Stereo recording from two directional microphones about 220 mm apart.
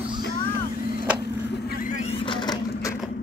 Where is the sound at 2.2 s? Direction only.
20° left (ahead or behind).